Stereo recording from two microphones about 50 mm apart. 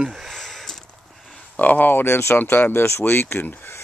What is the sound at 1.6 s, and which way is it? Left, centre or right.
Speech, left.